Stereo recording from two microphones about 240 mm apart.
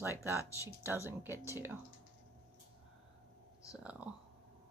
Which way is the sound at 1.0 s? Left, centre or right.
Centre.